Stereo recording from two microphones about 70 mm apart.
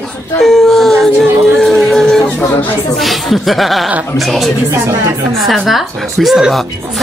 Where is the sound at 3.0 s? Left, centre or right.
Centre.